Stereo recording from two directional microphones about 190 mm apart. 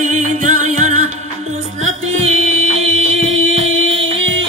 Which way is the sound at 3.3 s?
90° right.